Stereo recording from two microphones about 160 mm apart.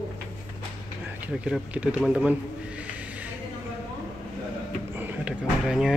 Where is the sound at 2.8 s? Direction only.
10° right (ahead or behind).